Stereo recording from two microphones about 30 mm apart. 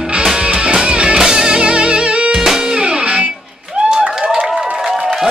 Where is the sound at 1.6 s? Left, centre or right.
Right.